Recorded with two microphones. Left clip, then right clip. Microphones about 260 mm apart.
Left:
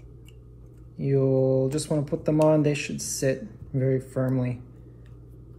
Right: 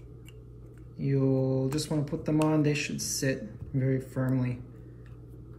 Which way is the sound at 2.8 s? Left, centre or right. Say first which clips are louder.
Left 4 dB; centre.